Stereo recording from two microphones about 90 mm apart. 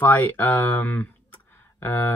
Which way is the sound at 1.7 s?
25° left (ahead or behind).